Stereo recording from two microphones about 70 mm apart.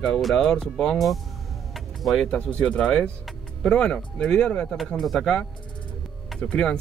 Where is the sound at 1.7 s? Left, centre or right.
Centre.